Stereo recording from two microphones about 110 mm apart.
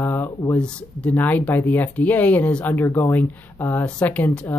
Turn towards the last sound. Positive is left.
turn(degrees=15)  # may be behind; listen again after turning